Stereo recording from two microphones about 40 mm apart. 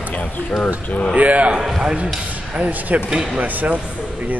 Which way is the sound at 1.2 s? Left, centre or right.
Right.